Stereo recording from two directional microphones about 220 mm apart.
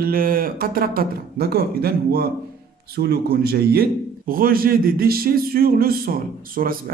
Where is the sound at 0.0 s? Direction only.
40° right (ahead or behind).